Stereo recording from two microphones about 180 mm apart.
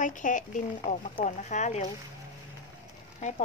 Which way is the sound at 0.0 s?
45° left (ahead or behind).